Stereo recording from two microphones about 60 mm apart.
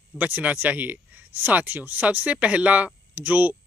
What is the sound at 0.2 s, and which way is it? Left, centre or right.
Speech, right.